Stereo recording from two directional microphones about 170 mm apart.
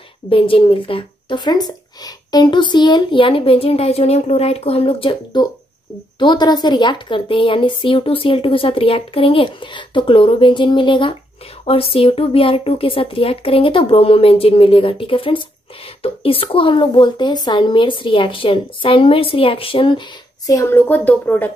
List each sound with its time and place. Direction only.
0.3 s a woman's voice: 30° left (ahead or behind); by 21.5 s 10° left (ahead or behind)